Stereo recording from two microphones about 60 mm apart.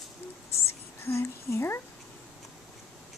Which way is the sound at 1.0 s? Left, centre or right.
Left.